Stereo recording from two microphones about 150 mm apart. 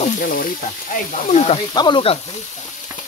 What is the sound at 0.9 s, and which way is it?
Speech, 50° left (ahead or behind).